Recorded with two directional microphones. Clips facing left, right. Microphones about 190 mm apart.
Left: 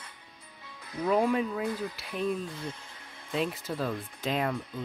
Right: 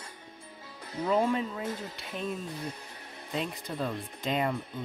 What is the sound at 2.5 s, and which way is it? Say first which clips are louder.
Speech: right 1 dB; 15° right (ahead or behind).